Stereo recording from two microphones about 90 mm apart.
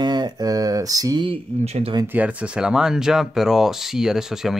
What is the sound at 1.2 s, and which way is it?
Speech, 85° right.